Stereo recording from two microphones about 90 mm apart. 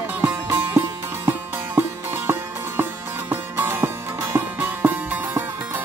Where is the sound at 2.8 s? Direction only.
25° right (ahead or behind).